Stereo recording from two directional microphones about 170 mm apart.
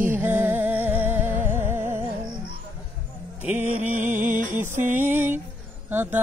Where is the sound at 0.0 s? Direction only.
10° right (ahead or behind).